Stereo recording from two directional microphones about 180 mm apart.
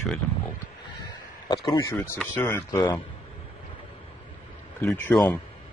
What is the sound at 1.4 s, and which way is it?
Speech, 20° left (ahead or behind).